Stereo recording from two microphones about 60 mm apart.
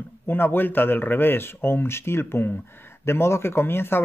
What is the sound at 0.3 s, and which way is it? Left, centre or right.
Speech, left.